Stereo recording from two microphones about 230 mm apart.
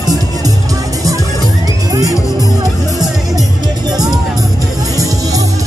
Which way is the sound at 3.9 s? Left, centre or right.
Centre.